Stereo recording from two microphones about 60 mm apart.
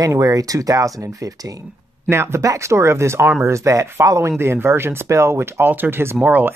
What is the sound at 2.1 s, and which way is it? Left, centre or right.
Speech, right.